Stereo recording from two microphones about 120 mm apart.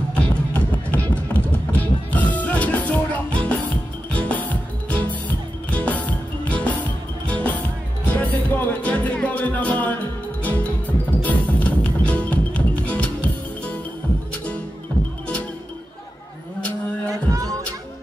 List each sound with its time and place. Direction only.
0.1 s music: 10° left (ahead or behind)
17.0 s music: 30° right (ahead or behind)